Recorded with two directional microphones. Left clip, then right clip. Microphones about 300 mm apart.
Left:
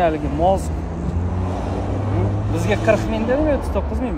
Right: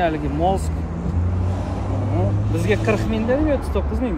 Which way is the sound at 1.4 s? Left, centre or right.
Left.